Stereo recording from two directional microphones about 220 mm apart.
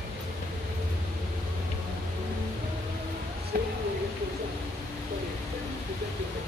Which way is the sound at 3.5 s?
45° right (ahead or behind).